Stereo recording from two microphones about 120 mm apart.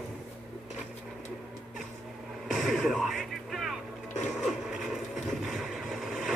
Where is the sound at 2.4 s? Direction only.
Centre (ahead or behind).